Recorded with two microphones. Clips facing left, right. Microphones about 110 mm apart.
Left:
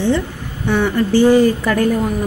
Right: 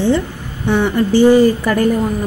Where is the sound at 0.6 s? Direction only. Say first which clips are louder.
Right 2 dB; 15° right (ahead or behind).